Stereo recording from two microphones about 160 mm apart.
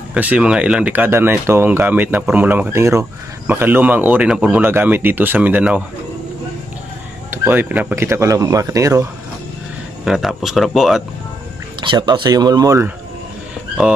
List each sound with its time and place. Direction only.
0.1 s speech: 10° right (ahead or behind)
7.2 s speech: 10° right (ahead or behind)
10.0 s speech: centre (ahead or behind)
11.8 s speech: 30° right (ahead or behind)